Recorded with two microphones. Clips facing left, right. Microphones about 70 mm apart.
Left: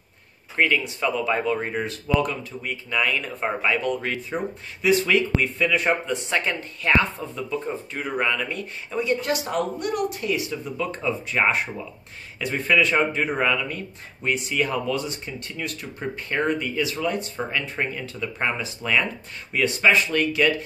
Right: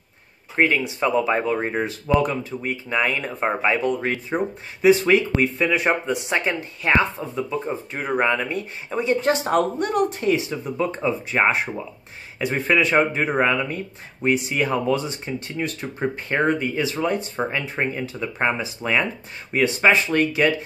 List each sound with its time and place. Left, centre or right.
0.6 s speech: right